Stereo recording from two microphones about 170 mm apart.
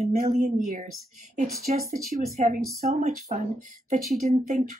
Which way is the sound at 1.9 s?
50° right (ahead or behind).